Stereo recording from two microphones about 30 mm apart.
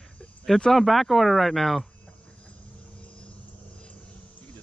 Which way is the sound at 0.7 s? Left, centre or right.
Centre.